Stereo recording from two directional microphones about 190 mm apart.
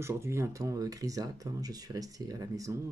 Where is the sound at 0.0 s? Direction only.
15° right (ahead or behind).